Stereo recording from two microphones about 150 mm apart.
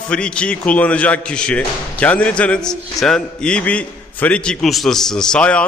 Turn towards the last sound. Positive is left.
turn(degrees=5)  # may be behind; listen again after turning